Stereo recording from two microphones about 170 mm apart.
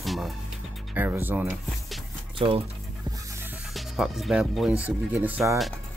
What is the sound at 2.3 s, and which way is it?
Speech, 30° right (ahead or behind).